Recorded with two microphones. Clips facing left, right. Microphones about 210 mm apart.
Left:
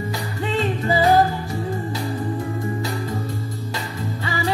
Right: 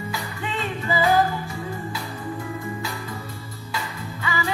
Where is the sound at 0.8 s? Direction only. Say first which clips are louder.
Left 3 dB; 40° left (ahead or behind).